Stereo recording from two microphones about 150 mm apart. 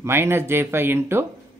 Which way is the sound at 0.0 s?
15° right (ahead or behind).